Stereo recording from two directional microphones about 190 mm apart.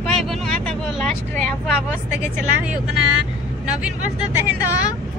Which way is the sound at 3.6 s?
5° right (ahead or behind).